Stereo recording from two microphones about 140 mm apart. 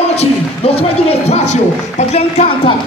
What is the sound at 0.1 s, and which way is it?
Speech, 45° left (ahead or behind).